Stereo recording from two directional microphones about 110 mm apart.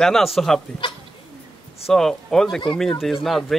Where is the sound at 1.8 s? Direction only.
5° left (ahead or behind).